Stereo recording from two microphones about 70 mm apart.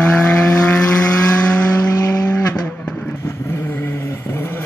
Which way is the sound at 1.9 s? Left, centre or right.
Left.